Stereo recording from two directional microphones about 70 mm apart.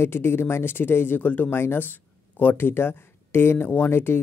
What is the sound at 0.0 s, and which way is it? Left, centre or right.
Speech, left.